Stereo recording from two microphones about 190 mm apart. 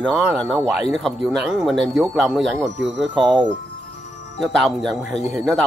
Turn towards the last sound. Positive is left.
turn(degrees=0)  # may be behind; listen again after turning